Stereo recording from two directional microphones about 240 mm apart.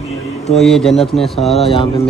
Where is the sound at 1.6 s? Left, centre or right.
Left.